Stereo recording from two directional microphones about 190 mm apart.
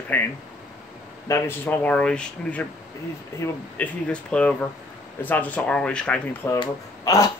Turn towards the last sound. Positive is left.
turn(degrees=15)  # may be behind; listen again after turning